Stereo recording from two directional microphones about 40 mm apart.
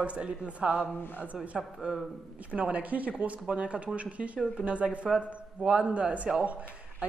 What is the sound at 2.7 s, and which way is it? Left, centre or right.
A woman's voice, right.